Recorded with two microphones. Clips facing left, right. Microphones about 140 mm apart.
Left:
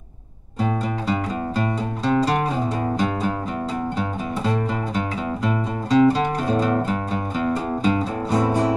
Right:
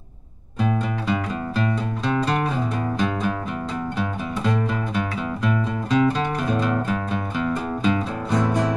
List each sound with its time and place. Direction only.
0.6 s music: 35° left (ahead or behind)
4.4 s music: 30° left (ahead or behind)